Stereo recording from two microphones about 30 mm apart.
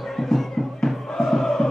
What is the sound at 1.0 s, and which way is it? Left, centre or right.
Choir, centre.